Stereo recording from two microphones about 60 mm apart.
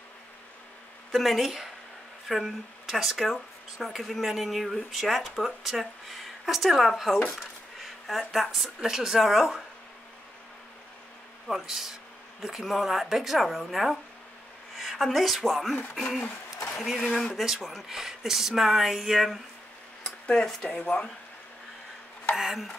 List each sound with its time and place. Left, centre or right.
1.1 s speech: centre
11.4 s speech: centre
17.4 s speech: centre
20.2 s speech: centre
22.3 s speech: centre